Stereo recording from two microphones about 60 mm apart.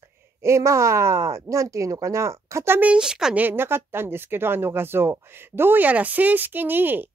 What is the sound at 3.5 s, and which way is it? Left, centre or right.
Speech, right.